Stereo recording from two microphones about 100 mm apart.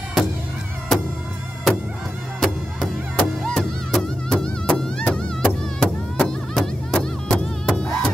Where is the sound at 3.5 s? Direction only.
5° left (ahead or behind).